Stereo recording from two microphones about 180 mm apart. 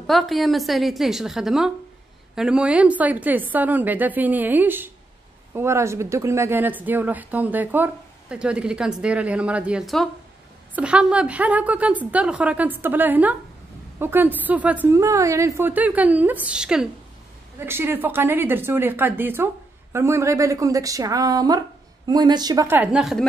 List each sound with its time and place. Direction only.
0.0 s a woman's voice: centre (ahead or behind)